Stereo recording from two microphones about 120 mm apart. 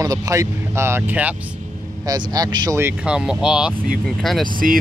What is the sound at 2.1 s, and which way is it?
Speech, 35° right (ahead or behind).